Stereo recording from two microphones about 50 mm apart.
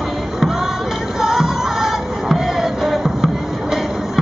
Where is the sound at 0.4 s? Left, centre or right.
Centre.